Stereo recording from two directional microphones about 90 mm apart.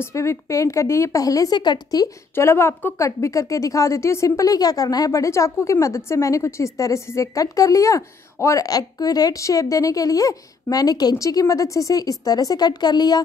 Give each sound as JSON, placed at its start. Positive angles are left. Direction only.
{"t": 0.0, "sound": "a woman's voice", "side_deg": 30}
{"t": 2.3, "sound": "a woman's voice", "side_deg": 30}